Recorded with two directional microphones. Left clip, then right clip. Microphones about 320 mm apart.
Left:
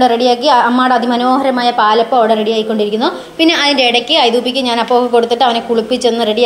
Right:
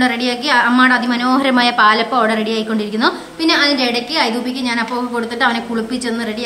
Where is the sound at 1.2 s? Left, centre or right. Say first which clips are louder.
Left 2 dB; centre.